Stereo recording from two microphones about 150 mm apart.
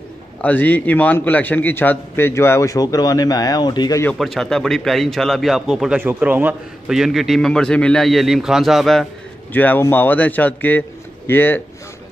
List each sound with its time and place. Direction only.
0.4 s a man's voice: 10° left (ahead or behind); by 4.0 s 30° left (ahead or behind)
4.2 s a man's voice: centre (ahead or behind)
9.5 s a man's voice: 10° left (ahead or behind)